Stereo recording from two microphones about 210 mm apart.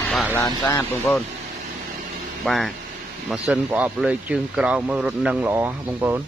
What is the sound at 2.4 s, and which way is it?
Speech, centre (ahead or behind).